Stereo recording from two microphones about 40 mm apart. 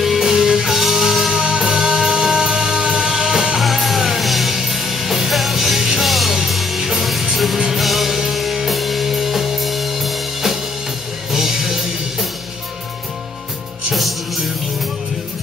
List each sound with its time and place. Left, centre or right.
0.0 s music: centre
3.5 s music: centre
7.8 s music: centre